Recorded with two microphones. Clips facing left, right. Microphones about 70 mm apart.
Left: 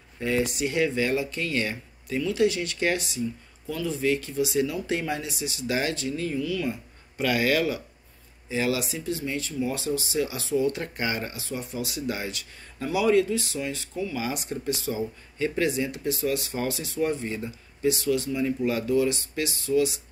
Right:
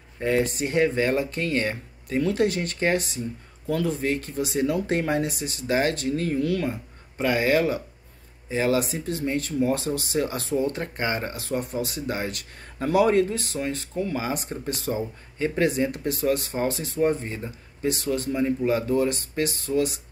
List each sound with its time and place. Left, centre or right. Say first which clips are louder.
0.2 s speech: right 2 dB; right
7.2 s speech: right 2 dB; right
11.3 s speech: right 5 dB; right
14.2 s speech: right 1 dB; right